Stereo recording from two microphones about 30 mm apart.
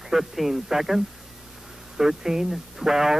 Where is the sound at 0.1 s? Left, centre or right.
Centre.